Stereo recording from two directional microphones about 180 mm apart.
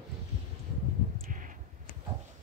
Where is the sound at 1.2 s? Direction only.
45° right (ahead or behind).